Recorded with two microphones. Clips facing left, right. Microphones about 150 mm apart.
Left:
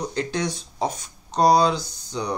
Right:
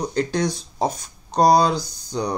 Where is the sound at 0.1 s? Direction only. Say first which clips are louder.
Right 4 dB; 40° right (ahead or behind).